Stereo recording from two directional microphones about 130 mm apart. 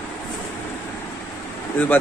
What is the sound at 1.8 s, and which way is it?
Speech, 15° left (ahead or behind).